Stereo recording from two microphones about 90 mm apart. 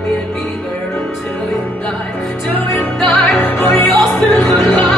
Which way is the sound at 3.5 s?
20° left (ahead or behind).